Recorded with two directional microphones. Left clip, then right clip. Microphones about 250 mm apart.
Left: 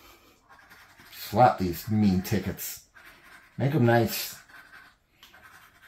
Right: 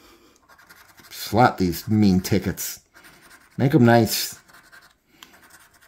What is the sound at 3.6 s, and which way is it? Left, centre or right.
Speech, right.